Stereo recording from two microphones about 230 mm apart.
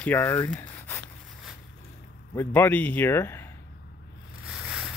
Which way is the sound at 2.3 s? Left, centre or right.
Centre.